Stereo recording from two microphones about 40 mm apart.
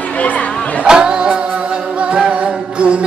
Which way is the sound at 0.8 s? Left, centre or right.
Centre.